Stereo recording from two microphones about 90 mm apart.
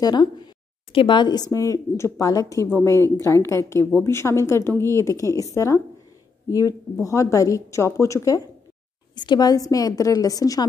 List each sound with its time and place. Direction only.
0.0 s a woman's voice: 55° left (ahead or behind); by 8.4 s 35° left (ahead or behind)
9.1 s speech: 55° left (ahead or behind)